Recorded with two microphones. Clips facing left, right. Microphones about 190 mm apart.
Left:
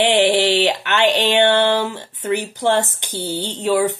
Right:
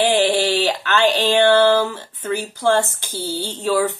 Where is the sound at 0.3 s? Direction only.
25° left (ahead or behind).